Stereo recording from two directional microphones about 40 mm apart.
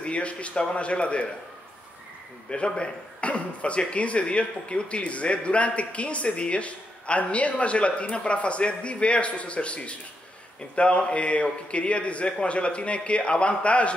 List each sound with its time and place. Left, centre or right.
0.0 s speech: left
2.5 s speech: left